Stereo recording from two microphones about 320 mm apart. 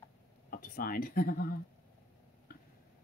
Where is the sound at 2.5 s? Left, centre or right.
Left.